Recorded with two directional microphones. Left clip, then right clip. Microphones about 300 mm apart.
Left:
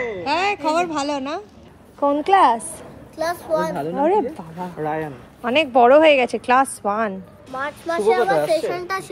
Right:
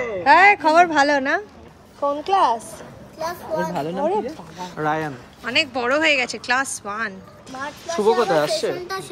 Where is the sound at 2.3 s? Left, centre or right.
Left.